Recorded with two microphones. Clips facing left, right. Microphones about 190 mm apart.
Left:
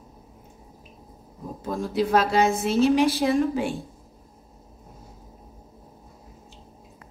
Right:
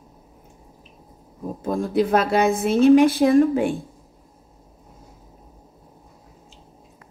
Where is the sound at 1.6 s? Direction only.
55° right (ahead or behind).